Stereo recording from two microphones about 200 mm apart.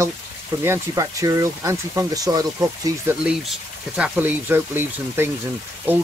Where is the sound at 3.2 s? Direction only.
5° right (ahead or behind).